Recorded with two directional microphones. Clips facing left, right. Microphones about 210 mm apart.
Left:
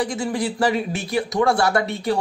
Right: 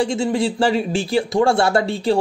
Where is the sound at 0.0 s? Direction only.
25° right (ahead or behind).